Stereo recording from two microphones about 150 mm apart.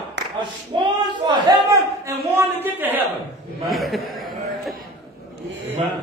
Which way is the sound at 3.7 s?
Centre (ahead or behind).